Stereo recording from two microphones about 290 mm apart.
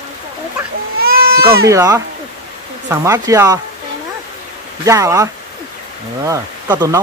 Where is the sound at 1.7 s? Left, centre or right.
Centre.